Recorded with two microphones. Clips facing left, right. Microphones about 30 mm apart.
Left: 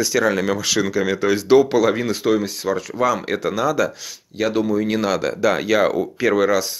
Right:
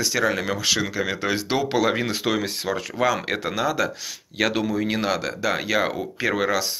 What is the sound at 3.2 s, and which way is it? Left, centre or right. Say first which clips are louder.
Speech: left 4 dB; right.